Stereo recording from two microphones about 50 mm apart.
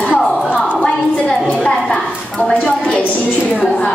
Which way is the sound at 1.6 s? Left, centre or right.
Left.